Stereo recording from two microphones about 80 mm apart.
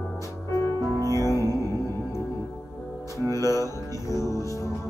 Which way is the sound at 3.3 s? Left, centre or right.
Left.